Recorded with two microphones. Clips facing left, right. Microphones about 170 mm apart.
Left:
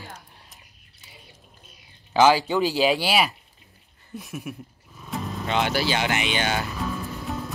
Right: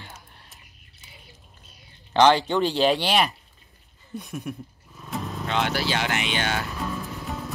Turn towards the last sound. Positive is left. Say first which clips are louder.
# left 2 dB
turn(degrees=0)  # may be behind; listen again after turning